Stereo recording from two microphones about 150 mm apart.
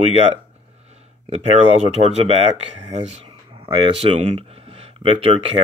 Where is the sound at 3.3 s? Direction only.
35° right (ahead or behind).